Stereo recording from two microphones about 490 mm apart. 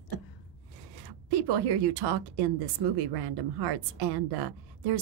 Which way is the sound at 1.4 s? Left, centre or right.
Right.